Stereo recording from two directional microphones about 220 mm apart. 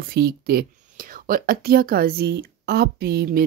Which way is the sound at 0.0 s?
45° right (ahead or behind).